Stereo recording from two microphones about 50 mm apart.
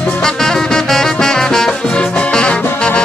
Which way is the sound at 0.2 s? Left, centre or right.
Centre.